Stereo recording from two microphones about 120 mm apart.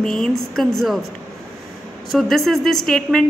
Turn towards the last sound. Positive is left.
turn(degrees=5)  # may be behind; listen again after turning